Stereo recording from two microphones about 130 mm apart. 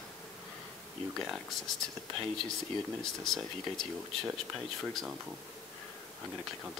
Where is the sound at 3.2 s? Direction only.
Centre (ahead or behind).